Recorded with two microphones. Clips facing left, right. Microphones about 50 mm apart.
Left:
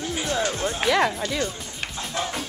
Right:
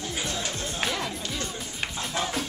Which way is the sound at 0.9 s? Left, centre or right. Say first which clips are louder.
Left 14 dB; left.